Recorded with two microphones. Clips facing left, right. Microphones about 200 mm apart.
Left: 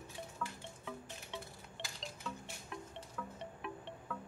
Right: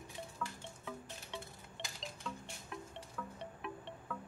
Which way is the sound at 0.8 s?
Centre (ahead or behind).